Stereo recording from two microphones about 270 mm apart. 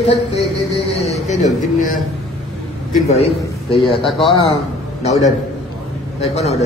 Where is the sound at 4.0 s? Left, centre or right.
Centre.